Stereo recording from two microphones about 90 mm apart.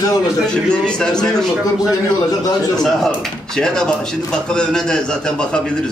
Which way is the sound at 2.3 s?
45° left (ahead or behind).